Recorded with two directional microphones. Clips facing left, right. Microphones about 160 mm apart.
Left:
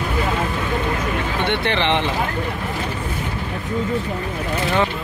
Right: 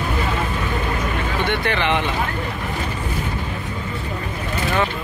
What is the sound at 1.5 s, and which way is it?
Speech, 25° left (ahead or behind).